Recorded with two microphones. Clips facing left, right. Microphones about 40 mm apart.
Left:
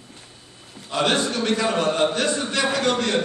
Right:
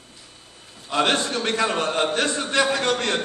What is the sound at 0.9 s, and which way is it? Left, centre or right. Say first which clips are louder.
A man's voice: even; right.